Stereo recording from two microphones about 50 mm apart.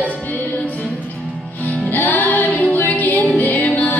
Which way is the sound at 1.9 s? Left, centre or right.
Left.